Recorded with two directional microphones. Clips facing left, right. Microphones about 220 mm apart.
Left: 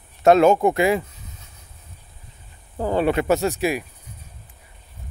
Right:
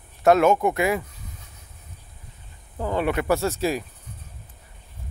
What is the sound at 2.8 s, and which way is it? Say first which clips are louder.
Speech: left 4 dB; 35° left (ahead or behind).